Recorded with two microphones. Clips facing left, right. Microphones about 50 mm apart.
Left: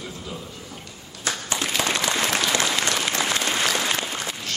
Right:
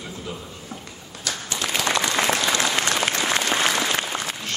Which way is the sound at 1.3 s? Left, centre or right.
Left.